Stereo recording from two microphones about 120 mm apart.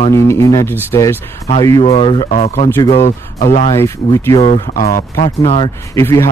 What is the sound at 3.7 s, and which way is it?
Speech, 20° left (ahead or behind).